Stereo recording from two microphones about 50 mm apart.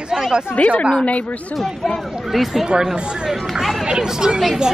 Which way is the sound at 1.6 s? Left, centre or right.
Centre.